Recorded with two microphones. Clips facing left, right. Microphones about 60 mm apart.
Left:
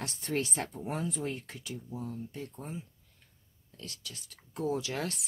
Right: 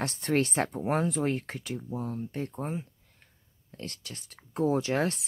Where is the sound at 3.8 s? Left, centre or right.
Right.